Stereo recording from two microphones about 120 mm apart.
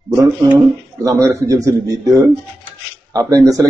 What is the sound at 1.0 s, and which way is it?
Speech, 25° right (ahead or behind).